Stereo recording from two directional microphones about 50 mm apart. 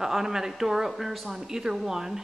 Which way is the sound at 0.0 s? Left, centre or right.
Centre.